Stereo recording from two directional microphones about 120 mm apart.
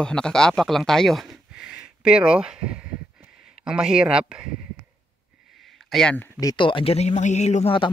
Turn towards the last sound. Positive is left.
turn(degrees=70)  # may be behind; listen again after turning